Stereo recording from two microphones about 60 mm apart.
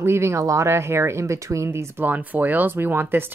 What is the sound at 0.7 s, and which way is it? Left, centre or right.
Speech, right.